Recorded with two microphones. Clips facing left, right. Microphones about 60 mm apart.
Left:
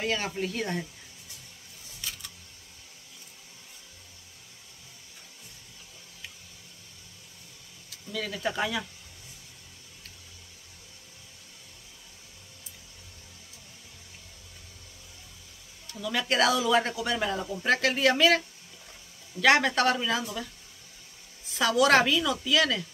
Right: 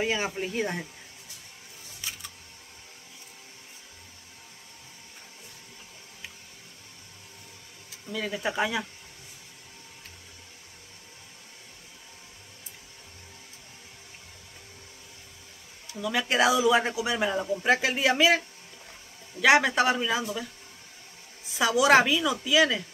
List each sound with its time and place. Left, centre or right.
0.0 s speech: centre
2.0 s a sound: centre
7.9 s speech: right
15.9 s speech: centre
19.4 s speech: centre
21.5 s speech: centre